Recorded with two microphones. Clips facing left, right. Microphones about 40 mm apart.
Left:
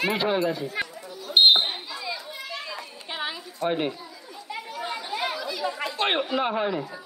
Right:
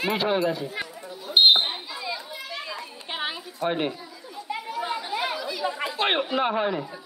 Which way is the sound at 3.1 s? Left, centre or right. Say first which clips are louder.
Right 1 dB; right.